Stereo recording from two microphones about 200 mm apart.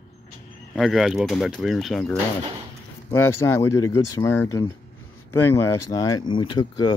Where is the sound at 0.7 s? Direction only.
Centre (ahead or behind).